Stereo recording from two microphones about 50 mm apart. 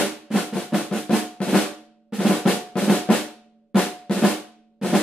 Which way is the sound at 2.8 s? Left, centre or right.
Centre.